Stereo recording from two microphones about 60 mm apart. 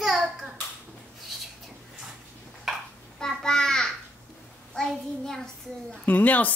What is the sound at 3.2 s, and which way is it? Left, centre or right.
Crow, centre.